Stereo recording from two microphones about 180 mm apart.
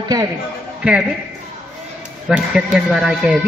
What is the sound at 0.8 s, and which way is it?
Speech, 5° right (ahead or behind).